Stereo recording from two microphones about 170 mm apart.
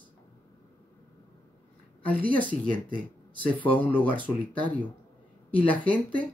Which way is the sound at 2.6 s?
55° right (ahead or behind).